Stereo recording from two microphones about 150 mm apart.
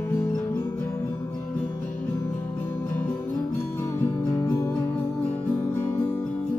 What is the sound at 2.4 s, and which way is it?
Music, 15° left (ahead or behind).